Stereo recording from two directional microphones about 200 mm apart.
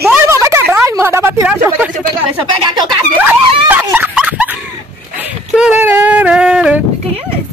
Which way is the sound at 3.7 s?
10° right (ahead or behind).